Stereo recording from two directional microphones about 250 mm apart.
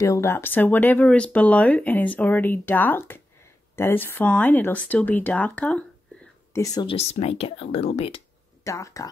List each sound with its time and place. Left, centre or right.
0.0 s speech: centre
8.6 s speech: centre